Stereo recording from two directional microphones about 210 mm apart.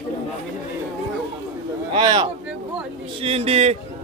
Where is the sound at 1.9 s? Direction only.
20° right (ahead or behind).